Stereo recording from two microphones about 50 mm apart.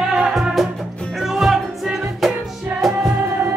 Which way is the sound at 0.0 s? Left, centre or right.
Centre.